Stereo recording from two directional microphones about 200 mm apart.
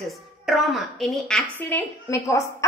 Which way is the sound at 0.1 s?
Centre (ahead or behind).